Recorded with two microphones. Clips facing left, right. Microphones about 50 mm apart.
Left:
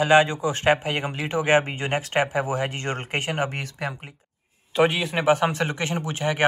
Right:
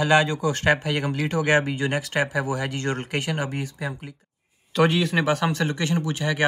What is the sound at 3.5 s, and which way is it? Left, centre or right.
Speech, left.